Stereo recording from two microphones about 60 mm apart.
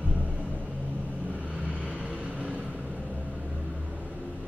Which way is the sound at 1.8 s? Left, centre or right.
Right.